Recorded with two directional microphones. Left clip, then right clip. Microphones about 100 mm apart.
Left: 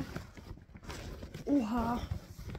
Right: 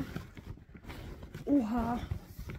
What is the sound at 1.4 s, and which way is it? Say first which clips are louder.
Speech: right 1 dB; 5° left (ahead or behind).